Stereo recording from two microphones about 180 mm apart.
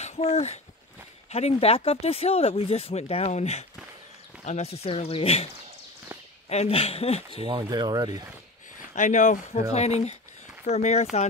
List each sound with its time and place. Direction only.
0.0 s speech: 35° left (ahead or behind)
6.5 s speech: 35° left (ahead or behind)
7.4 s speech: 25° right (ahead or behind)
8.9 s speech: 45° left (ahead or behind)